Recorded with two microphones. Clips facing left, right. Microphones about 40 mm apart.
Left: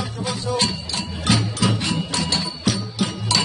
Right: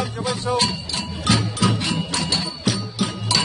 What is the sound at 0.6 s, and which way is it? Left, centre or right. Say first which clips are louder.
Hammer: right 1 dB; centre.